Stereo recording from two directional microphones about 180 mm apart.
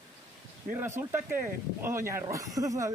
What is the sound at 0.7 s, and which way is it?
Speech, 10° right (ahead or behind).